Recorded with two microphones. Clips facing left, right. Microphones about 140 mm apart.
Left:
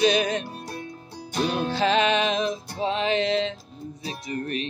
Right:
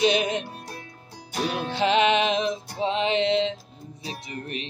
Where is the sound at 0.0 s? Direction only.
25° right (ahead or behind).